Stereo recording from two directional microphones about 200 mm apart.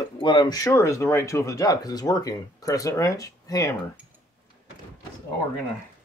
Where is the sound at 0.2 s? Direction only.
25° left (ahead or behind).